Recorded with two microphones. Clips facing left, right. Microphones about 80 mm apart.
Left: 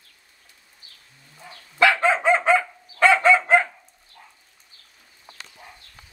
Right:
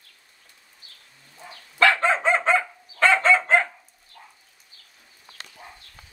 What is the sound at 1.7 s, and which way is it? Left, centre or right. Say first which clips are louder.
Dog: left 1 dB; centre.